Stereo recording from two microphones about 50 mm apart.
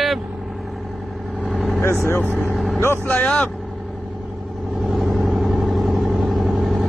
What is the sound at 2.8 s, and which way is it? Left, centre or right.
Speech, left.